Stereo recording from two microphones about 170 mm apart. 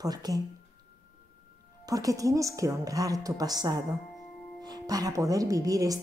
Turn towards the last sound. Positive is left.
turn(degrees=-20)  # may be behind; listen again after turning